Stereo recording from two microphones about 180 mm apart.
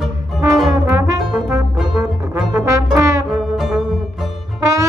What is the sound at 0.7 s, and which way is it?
Brass instrument, 20° right (ahead or behind).